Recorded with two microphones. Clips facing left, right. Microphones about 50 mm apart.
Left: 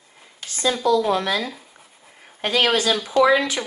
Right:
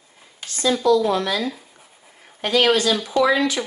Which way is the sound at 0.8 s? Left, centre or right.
Left.